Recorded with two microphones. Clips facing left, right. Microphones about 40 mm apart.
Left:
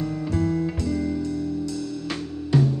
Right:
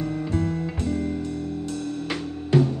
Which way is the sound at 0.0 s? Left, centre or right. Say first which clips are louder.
Left 1 dB; right.